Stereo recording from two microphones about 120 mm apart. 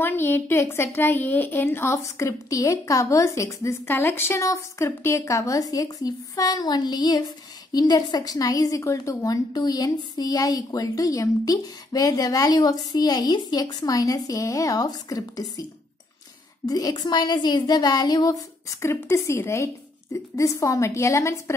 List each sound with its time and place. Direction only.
0.0 s a woman's voice: 20° left (ahead or behind)
16.6 s a woman's voice: 30° left (ahead or behind)